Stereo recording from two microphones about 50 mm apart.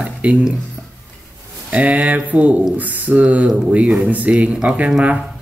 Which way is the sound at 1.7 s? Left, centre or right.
Right.